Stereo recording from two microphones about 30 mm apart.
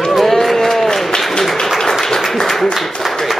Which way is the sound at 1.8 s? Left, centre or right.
Centre.